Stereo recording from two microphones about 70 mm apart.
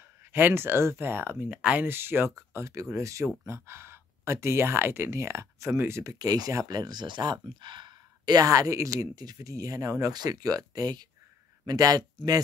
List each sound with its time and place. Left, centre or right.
0.3 s speech: right
1.5 s speech: right
1.9 s speech: right
2.5 s speech: right
6.0 s speech: right
8.5 s speech: right
10.1 s speech: right